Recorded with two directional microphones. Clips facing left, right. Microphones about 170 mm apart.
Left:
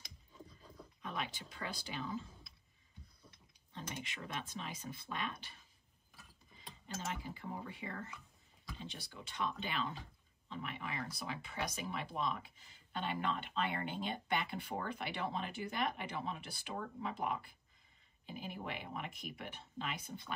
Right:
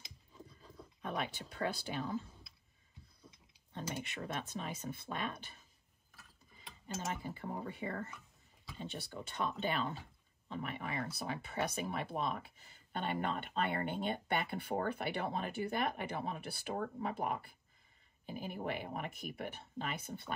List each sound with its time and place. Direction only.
1.0 s speech: 50° right (ahead or behind)
3.7 s speech: 50° right (ahead or behind)
7.1 s speech: 50° right (ahead or behind)